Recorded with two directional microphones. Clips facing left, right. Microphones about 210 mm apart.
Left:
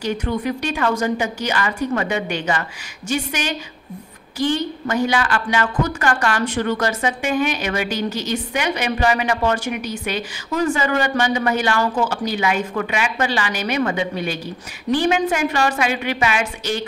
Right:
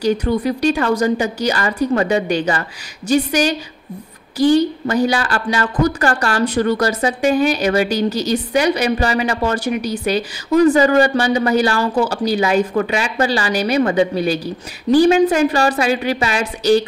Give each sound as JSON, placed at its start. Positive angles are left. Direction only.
{"t": 0.0, "sound": "a woman's voice", "side_deg": -35}